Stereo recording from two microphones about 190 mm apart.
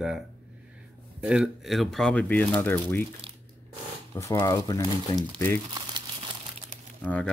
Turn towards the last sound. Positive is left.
turn(degrees=5)  # may be behind; listen again after turning